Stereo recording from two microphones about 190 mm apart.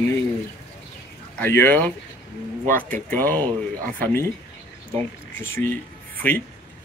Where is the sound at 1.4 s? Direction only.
10° left (ahead or behind).